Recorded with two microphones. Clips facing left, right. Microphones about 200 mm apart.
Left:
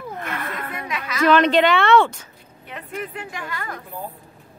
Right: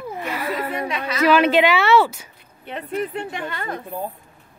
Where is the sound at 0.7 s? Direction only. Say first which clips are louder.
Right 5 dB; 30° right (ahead or behind).